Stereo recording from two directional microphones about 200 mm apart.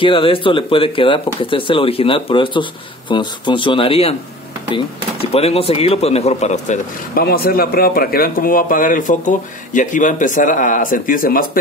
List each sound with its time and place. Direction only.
0.0 s speech: 25° left (ahead or behind)
7.2 s speech: 50° left (ahead or behind)